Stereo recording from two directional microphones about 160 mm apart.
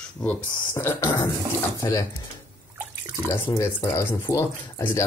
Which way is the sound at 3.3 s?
15° left (ahead or behind).